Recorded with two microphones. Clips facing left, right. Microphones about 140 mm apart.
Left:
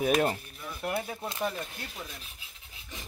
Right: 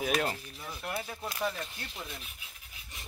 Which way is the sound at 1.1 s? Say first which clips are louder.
Left 2 dB; 25° left (ahead or behind).